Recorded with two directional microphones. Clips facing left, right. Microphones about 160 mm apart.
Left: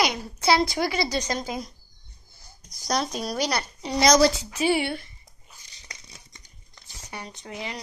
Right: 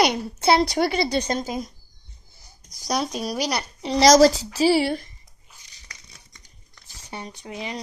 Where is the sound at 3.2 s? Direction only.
10° right (ahead or behind).